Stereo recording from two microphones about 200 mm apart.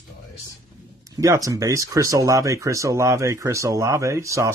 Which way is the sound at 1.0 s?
15° right (ahead or behind).